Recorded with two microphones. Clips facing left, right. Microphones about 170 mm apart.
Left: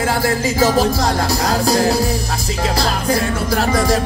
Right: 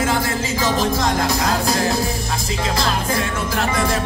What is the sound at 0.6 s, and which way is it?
Music, 35° left (ahead or behind).